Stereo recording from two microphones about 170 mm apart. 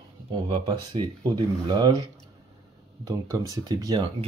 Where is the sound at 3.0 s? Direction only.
20° right (ahead or behind).